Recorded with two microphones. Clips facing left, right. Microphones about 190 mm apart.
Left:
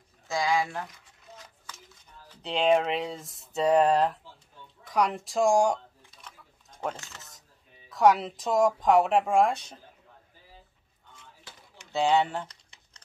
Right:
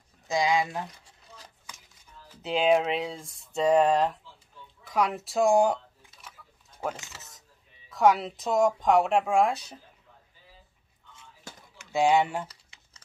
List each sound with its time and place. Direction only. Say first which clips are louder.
0.3 s speech: right 2 dB; 20° right (ahead or behind)
0.9 s a sound: left 2 dB; 35° right (ahead or behind)
2.2 s speech: right 1 dB; 5° right (ahead or behind)
7.9 s speech: left 1 dB; centre (ahead or behind)
11.5 s a sound: right 7 dB; 45° right (ahead or behind)
11.9 s typing: right 1 dB; 10° right (ahead or behind)